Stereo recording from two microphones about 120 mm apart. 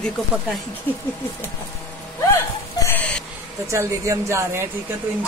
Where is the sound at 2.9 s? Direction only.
10° left (ahead or behind).